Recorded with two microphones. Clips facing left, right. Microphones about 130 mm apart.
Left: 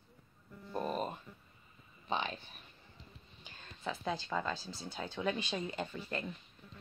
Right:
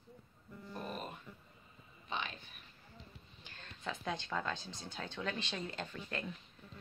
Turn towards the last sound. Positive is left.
turn(degrees=5)  # may be behind; listen again after turning